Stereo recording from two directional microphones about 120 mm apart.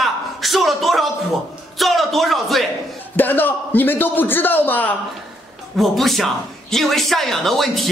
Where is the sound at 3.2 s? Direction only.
15° left (ahead or behind).